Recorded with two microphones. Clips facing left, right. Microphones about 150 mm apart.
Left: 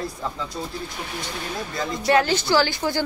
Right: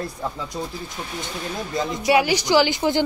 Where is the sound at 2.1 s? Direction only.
10° right (ahead or behind).